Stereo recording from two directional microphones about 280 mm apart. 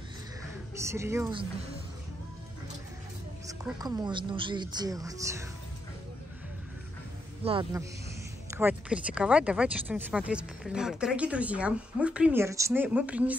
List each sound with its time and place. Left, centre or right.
0.7 s speech: centre
3.4 s a woman's voice: centre
7.4 s a woman's voice: centre
8.5 s speech: centre